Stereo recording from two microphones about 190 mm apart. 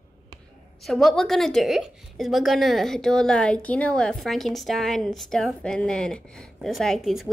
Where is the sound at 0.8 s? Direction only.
Centre (ahead or behind).